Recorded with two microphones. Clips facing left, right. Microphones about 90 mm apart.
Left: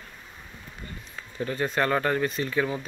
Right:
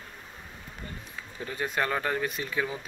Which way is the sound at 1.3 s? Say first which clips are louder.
Left 4 dB; 10° right (ahead or behind).